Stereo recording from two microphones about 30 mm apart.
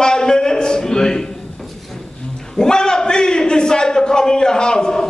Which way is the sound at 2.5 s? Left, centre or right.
Left.